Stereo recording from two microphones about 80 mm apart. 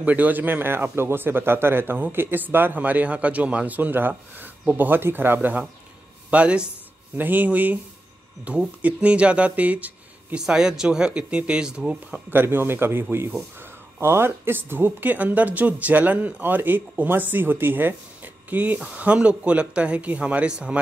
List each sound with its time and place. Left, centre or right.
0.0 s a man's voice: centre
10.4 s speech: centre
12.3 s a man's voice: right